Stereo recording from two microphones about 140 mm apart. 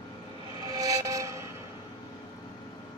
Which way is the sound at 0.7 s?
25° right (ahead or behind).